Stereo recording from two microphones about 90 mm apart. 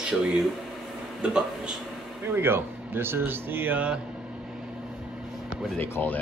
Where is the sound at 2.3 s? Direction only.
25° right (ahead or behind).